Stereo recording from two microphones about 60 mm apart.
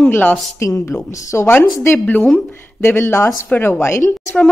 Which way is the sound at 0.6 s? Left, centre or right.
Left.